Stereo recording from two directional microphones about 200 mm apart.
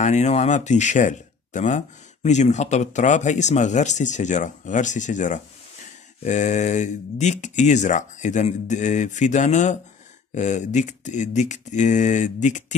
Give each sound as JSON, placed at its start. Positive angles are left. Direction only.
{"t": 0.0, "sound": "speech", "side_deg": 35}